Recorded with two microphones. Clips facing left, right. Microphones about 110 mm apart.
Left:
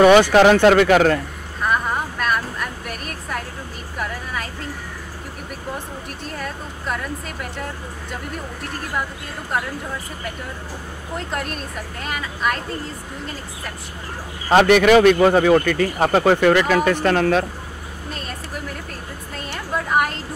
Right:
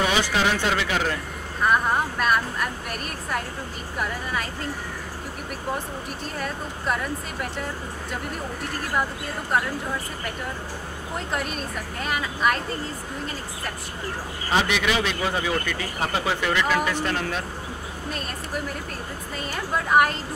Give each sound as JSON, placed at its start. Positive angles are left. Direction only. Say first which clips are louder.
{"t": 0.0, "sound": "speech", "louder": "left 12 dB", "side_deg": 60}
{"t": 1.6, "sound": "a sound", "louder": "even", "side_deg": 0}
{"t": 4.0, "sound": "vehicle", "louder": "left 1 dB", "side_deg": 0}
{"t": 6.2, "sound": "speech", "louder": "left 1 dB", "side_deg": 0}
{"t": 11.1, "sound": "speech", "louder": "left 2 dB", "side_deg": 0}
{"t": 14.5, "sound": "speech", "louder": "left 11 dB", "side_deg": 55}
{"t": 18.1, "sound": "a sound", "louder": "even", "side_deg": 0}